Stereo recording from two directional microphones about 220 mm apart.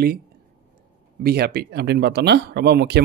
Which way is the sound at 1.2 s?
45° right (ahead or behind).